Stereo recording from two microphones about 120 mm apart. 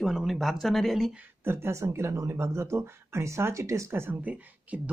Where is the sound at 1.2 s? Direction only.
20° right (ahead or behind).